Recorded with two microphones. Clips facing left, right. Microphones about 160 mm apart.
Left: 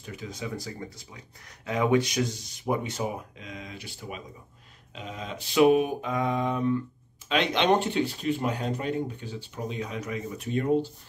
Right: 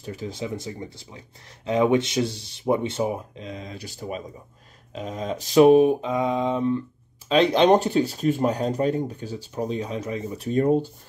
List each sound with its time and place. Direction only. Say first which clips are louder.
0.0 s speech: right 5 dB; 35° right (ahead or behind)
7.2 s speech: right 6 dB; 35° right (ahead or behind)